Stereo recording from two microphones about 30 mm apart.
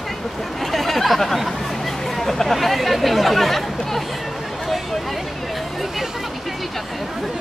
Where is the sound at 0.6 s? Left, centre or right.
Centre.